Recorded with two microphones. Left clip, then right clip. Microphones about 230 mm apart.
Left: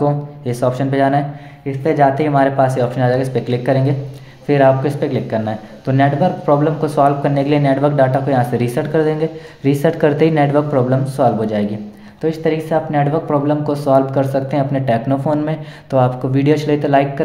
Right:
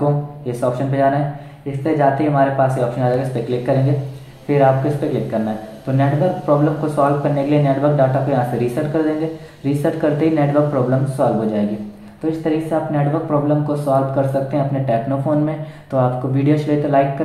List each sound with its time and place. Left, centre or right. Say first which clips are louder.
0.0 s speech: left 2 dB; left